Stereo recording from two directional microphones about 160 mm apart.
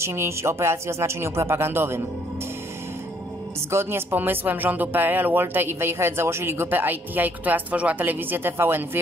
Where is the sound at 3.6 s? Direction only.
15° right (ahead or behind).